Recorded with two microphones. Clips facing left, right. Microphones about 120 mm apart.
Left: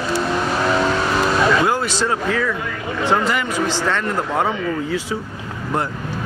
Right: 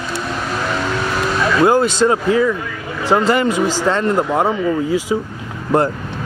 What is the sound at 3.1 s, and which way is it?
Speech, 35° right (ahead or behind).